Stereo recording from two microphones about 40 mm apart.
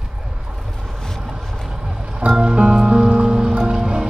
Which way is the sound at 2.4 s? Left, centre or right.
Right.